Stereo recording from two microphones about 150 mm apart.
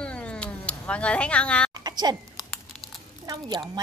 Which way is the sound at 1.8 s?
25° right (ahead or behind).